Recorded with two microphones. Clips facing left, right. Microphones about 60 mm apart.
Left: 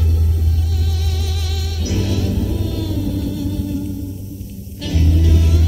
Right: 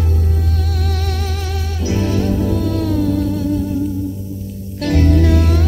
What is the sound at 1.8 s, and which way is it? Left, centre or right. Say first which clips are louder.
Music: right 4 dB; right.